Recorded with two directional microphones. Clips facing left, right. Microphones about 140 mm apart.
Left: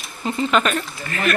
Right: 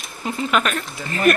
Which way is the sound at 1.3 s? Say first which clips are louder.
Right 4 dB; 45° right (ahead or behind).